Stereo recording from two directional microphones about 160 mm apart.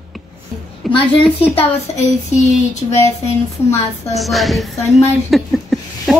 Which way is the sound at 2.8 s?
35° left (ahead or behind).